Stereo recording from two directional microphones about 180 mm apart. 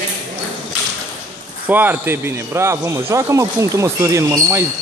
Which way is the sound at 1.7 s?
10° right (ahead or behind).